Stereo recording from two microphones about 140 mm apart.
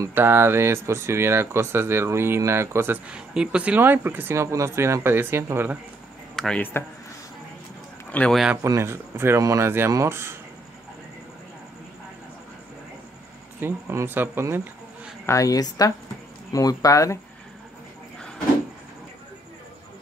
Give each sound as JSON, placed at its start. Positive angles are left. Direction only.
{"t": 0.0, "sound": "speech", "side_deg": -15}
{"t": 6.3, "sound": "speech", "side_deg": 5}
{"t": 8.1, "sound": "speech", "side_deg": 10}
{"t": 8.6, "sound": "speech", "side_deg": -20}
{"t": 13.6, "sound": "speech", "side_deg": -15}
{"t": 15.2, "sound": "a woman's voice", "side_deg": 25}